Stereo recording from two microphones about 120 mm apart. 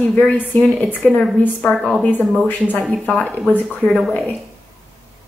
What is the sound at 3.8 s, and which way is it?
Speech, 5° left (ahead or behind).